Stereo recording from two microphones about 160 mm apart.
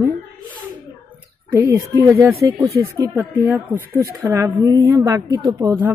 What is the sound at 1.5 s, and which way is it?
A woman's voice, 20° right (ahead or behind).